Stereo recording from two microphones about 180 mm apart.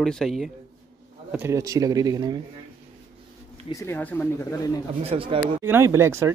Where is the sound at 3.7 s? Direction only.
15° left (ahead or behind).